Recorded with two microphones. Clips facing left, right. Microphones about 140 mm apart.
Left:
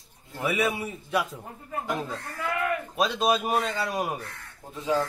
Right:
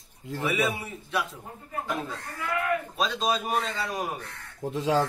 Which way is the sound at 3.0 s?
10° left (ahead or behind).